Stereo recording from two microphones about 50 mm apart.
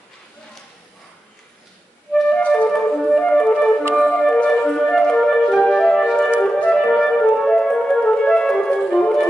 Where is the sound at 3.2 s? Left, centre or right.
Centre.